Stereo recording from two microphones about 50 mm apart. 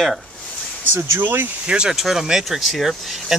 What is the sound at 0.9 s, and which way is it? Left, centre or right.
Speech, right.